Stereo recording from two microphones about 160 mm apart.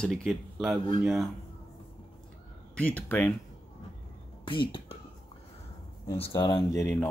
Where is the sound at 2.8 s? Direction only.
10° left (ahead or behind).